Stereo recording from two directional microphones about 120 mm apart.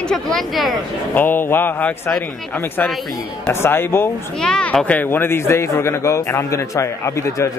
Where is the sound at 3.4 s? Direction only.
20° left (ahead or behind).